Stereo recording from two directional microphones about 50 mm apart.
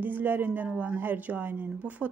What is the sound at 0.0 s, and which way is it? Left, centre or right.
A woman's voice, right.